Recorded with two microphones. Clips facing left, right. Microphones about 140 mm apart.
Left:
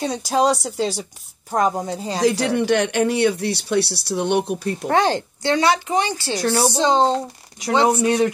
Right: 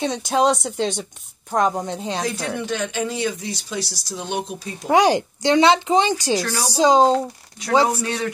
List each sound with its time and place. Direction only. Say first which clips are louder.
0.0 s speech: even; centre (ahead or behind)
2.2 s speech: left 8 dB; 80° left; by 4.7 s 60° left (ahead or behind)
4.8 s speech: right 3 dB; 15° right (ahead or behind)
6.4 s a woman's voice: left 7 dB; 30° left (ahead or behind)
6.8 s speech: right 5 dB; 10° right (ahead or behind)
8.0 s a man's voice: left 8 dB; 15° left (ahead or behind)